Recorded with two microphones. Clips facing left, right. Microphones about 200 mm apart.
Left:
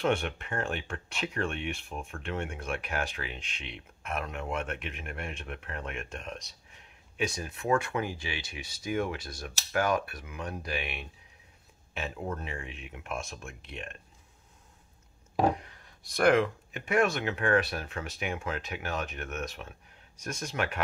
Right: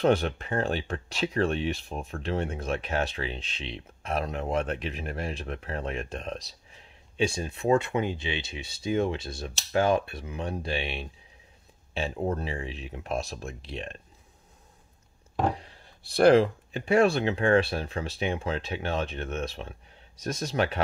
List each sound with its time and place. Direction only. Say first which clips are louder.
0.0 s speech: right 5 dB; 35° right (ahead or behind)
15.5 s speech: left 1 dB; 30° right (ahead or behind)